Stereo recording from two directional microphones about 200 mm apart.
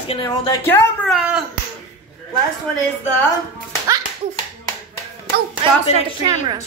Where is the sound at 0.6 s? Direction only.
10° left (ahead or behind).